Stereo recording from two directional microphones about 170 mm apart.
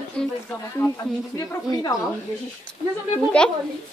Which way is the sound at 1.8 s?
20° left (ahead or behind).